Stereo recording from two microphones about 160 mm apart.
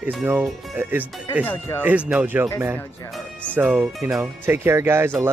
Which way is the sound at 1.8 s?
10° right (ahead or behind).